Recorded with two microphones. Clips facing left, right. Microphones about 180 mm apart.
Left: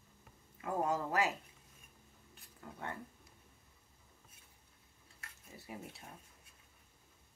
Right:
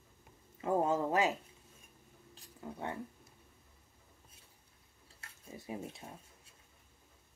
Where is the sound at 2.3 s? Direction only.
20° right (ahead or behind).